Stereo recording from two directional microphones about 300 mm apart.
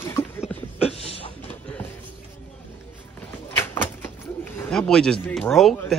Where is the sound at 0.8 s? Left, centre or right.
Centre.